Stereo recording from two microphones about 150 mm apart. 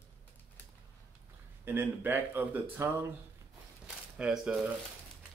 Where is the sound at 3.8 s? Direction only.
5° right (ahead or behind).